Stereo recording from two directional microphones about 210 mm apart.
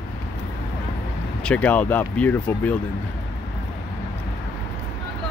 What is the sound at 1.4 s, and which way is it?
Speech, 5° left (ahead or behind).